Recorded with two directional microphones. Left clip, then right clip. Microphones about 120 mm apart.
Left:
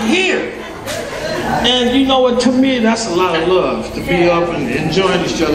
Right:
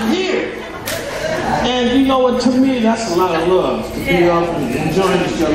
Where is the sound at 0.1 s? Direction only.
20° left (ahead or behind).